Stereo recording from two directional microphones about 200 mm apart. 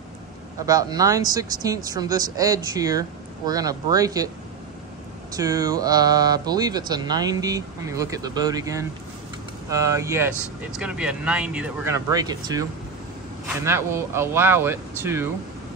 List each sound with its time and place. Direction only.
0.7 s speech: 15° right (ahead or behind)
5.4 s speech: 15° right (ahead or behind)
13.7 s speech: 15° right (ahead or behind)